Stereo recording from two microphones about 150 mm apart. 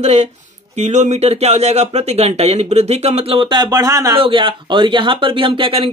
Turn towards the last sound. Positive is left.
turn(degrees=-35)  # may be behind; listen again after turning